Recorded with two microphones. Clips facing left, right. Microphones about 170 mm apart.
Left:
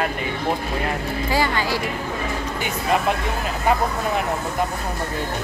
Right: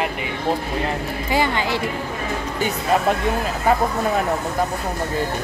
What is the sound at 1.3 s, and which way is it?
Speech, 20° right (ahead or behind).